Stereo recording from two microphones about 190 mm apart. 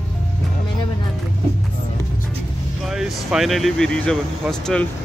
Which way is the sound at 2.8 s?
Centre (ahead or behind).